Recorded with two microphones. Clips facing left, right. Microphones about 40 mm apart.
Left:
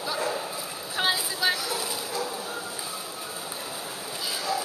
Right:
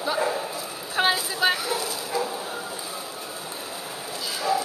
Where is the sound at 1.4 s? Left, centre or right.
Right.